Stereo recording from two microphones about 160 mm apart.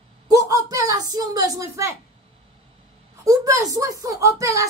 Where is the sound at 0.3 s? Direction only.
20° right (ahead or behind).